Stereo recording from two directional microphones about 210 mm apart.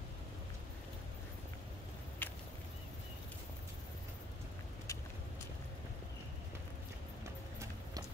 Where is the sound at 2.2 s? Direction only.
10° left (ahead or behind).